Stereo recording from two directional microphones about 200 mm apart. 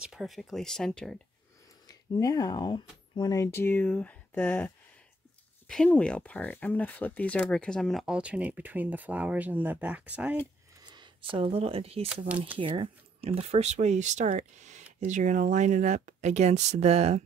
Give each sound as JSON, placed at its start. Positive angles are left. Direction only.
{"t": 0.0, "sound": "speech", "side_deg": 0}
{"t": 1.9, "sound": "speech", "side_deg": 20}
{"t": 10.8, "sound": "a sound", "side_deg": -20}
{"t": 11.3, "sound": "speech", "side_deg": -30}
{"t": 12.3, "sound": "speech", "side_deg": -10}
{"t": 12.5, "sound": "speech", "side_deg": -25}